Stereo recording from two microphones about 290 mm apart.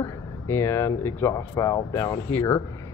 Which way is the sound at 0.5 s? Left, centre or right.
Centre.